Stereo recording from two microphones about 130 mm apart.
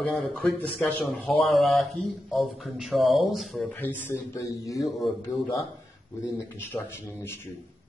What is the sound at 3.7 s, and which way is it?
A man's voice, 15° left (ahead or behind).